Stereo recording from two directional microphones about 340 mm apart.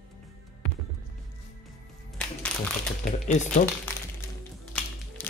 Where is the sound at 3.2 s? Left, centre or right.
Left.